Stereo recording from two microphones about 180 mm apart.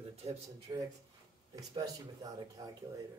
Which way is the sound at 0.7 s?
20° right (ahead or behind).